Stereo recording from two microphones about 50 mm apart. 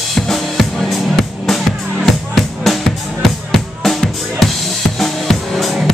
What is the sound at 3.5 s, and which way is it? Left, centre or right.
Music, centre.